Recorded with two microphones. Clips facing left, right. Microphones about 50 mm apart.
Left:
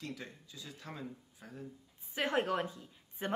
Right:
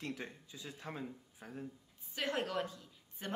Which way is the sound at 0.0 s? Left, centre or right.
Right.